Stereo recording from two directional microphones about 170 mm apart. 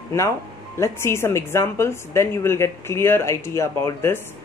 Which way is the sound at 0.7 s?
15° left (ahead or behind).